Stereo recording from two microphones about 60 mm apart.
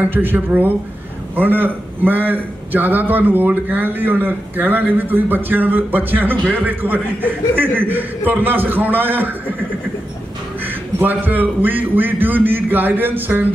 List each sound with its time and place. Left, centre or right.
0.0 s a man's voice: right
11.0 s a man's voice: right